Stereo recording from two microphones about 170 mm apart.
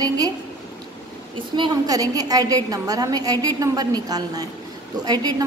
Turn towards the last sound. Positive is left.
turn(degrees=-25)  # may be behind; listen again after turning